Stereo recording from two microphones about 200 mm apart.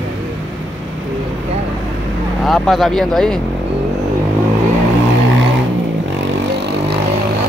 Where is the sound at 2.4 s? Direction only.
Centre (ahead or behind).